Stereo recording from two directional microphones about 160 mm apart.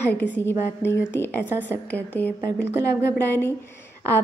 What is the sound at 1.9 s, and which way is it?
A woman's voice, 10° left (ahead or behind).